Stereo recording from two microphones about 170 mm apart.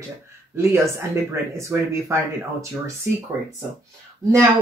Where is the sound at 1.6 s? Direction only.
15° right (ahead or behind).